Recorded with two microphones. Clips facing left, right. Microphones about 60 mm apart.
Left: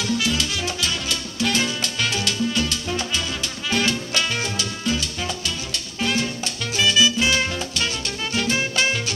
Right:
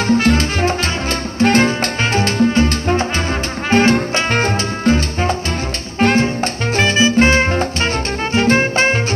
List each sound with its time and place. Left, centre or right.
0.1 s music: right